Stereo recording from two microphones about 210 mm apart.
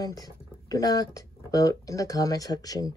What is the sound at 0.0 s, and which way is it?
Speech, 15° left (ahead or behind).